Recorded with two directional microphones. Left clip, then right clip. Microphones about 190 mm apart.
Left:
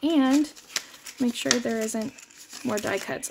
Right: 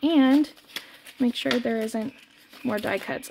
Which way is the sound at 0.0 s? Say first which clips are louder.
Right 2 dB; 20° right (ahead or behind).